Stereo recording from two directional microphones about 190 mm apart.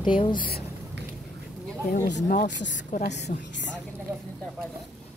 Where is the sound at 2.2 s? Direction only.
45° left (ahead or behind).